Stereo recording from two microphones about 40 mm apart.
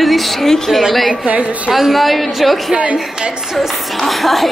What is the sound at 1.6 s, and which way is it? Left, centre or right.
A woman's voice, centre.